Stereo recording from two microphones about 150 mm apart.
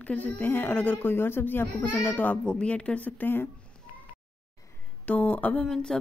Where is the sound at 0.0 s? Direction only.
10° left (ahead or behind).